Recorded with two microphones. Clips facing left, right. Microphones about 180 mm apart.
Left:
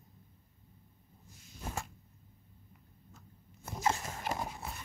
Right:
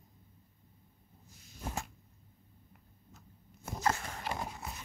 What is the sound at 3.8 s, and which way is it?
Dog, 20° left (ahead or behind).